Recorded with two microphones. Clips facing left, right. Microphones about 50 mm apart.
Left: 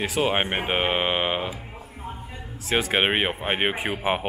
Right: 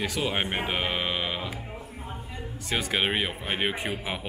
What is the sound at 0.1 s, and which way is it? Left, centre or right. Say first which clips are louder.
Speech: left 5 dB; left.